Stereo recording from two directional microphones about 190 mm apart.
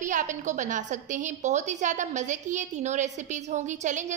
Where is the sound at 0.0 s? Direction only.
40° right (ahead or behind).